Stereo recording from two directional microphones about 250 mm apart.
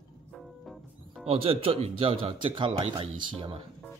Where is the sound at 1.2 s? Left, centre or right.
Right.